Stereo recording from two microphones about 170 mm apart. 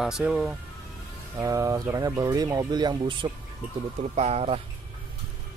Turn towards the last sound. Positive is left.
turn(degrees=-40)  # may be behind; listen again after turning